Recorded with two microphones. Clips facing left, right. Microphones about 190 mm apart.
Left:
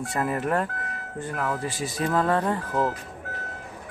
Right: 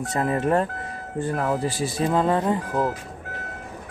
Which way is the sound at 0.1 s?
25° right (ahead or behind).